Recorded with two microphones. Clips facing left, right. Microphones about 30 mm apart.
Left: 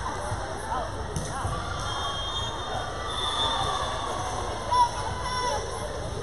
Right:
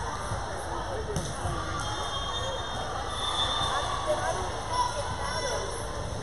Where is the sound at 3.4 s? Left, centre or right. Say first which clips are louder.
Left 2 dB; centre.